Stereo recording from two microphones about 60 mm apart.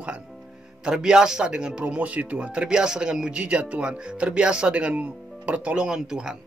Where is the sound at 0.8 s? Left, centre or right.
Centre.